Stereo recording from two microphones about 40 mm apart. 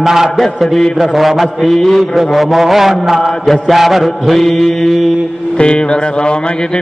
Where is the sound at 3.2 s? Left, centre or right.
Centre.